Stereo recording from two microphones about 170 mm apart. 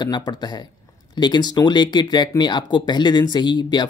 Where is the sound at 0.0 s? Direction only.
25° left (ahead or behind).